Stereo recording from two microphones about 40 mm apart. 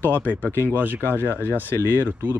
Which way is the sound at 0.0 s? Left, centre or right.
Left.